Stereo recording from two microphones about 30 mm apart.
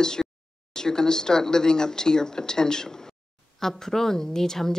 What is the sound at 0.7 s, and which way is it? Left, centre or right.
Speech, left.